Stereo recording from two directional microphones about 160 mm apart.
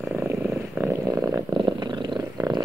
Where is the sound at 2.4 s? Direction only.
25° right (ahead or behind).